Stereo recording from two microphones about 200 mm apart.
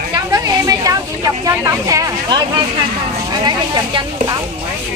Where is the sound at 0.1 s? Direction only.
20° right (ahead or behind).